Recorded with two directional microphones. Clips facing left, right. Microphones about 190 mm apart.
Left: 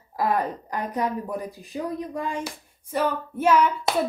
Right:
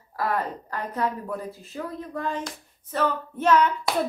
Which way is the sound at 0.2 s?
15° left (ahead or behind).